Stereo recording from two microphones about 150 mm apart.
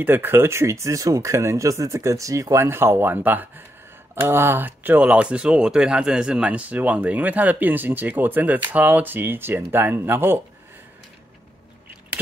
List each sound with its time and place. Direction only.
0.0 s speech: 15° right (ahead or behind)